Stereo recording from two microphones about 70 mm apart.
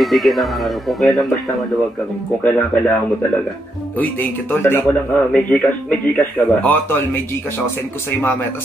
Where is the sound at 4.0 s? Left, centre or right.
Left.